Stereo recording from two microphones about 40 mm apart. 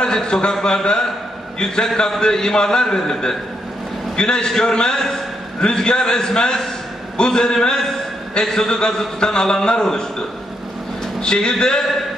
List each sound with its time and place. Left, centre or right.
0.0 s a man's voice: centre
11.1 s a man's voice: centre